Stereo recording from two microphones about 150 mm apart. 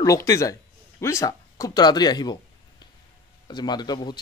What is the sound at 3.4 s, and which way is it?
Speech, 30° left (ahead or behind).